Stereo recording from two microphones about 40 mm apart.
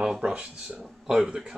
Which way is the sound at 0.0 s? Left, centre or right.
Centre.